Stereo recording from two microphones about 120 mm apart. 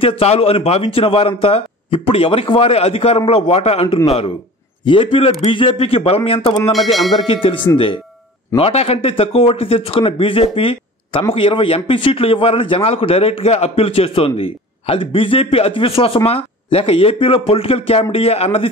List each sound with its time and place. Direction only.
0.0 s a man's voice: 55° left (ahead or behind)
6.7 s speech: centre (ahead or behind)
7.2 s a man's voice: 50° left (ahead or behind)